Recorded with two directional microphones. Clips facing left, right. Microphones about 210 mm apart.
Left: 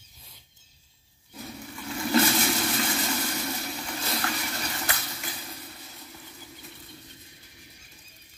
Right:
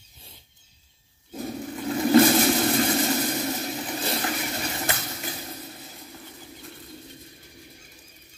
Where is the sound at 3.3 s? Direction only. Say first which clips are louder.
Right 5 dB; 35° right (ahead or behind).